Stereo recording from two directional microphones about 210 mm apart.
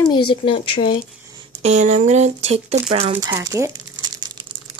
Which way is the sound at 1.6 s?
35° right (ahead or behind).